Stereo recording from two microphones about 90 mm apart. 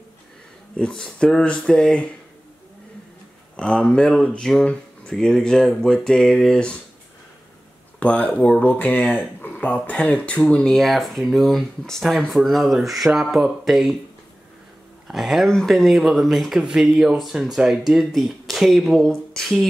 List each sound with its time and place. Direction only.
0.7 s speech: 10° left (ahead or behind)
3.5 s speech: 10° left (ahead or behind)
8.0 s speech: 15° left (ahead or behind); by 13.9 s 5° right (ahead or behind)
15.0 s speech: 5° right (ahead or behind)